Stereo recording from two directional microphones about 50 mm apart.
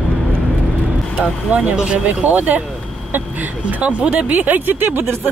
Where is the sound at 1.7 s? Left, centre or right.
Centre.